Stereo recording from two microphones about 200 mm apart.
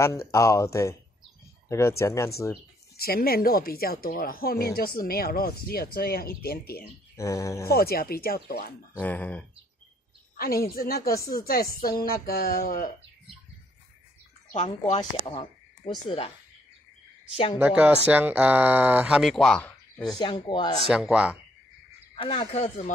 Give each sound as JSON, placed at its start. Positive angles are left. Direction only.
{"t": 0.0, "sound": "speech", "side_deg": 15}
{"t": 3.0, "sound": "speech", "side_deg": 50}
{"t": 7.2, "sound": "speech", "side_deg": 15}
{"t": 7.6, "sound": "speech", "side_deg": 50}
{"t": 9.0, "sound": "speech", "side_deg": 10}
{"t": 10.3, "sound": "speech", "side_deg": 50}
{"t": 14.5, "sound": "a woman's voice", "side_deg": 35}
{"t": 15.0, "sound": "speech", "side_deg": 25}
{"t": 17.6, "sound": "speech", "side_deg": -10}
{"t": 20.0, "sound": "speech", "side_deg": 20}
{"t": 20.9, "sound": "speech", "side_deg": -5}
{"t": 22.1, "sound": "speech", "side_deg": 25}